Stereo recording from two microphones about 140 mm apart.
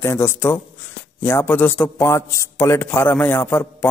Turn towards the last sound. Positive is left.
turn(degrees=15)  # may be behind; listen again after turning